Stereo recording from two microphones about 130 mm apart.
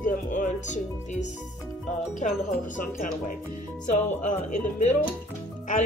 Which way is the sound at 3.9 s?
65° left (ahead or behind).